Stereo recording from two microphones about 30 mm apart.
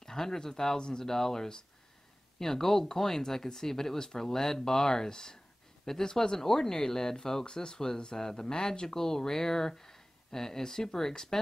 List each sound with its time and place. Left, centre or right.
0.0 s speech: centre